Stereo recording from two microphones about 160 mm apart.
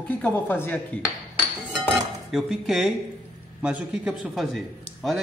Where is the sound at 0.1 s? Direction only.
10° left (ahead or behind).